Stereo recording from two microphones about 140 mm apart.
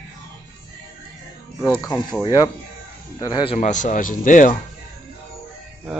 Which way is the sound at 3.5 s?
60° left (ahead or behind).